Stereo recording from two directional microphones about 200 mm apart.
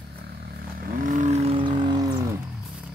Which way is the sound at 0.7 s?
40° right (ahead or behind).